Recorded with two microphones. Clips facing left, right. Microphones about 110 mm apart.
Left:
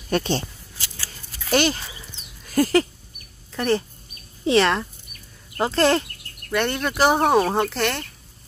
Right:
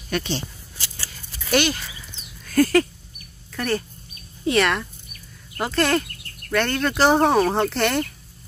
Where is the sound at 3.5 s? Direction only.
25° left (ahead or behind).